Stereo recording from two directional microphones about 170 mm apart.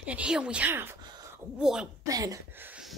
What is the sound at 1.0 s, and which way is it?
Wail, 25° right (ahead or behind).